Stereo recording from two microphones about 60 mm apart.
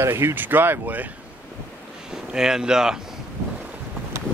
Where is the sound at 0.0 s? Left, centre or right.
Right.